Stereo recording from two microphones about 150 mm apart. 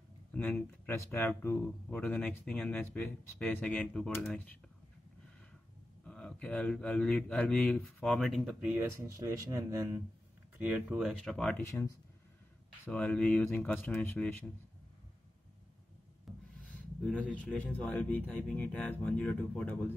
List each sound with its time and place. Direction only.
0.3 s speech: 10° left (ahead or behind)
6.0 s speech: 5° left (ahead or behind)
8.5 s speech: 10° right (ahead or behind)
11.7 s speech: 20° left (ahead or behind)
12.8 s speech: 10° left (ahead or behind)
16.3 s a sound: centre (ahead or behind)
17.0 s speech: 10° left (ahead or behind)